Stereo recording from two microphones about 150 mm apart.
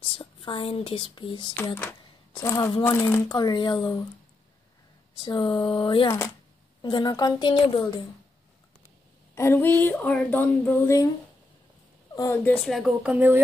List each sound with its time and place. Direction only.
0.0 s speech: 35° left (ahead or behind)
1.8 s a sound: 15° left (ahead or behind)
2.8 s speech: 15° left (ahead or behind)
3.3 s a woman's voice: 25° left (ahead or behind)
5.2 s a woman's voice: 30° left (ahead or behind)
9.3 s speech: 15° left (ahead or behind)
12.4 s speech: centre (ahead or behind)
13.0 s speech: 10° right (ahead or behind)